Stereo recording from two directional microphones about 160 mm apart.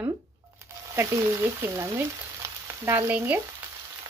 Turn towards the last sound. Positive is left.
turn(degrees=-10)  # may be behind; listen again after turning